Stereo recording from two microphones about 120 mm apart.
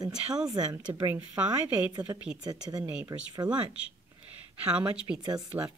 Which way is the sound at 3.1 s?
25° right (ahead or behind).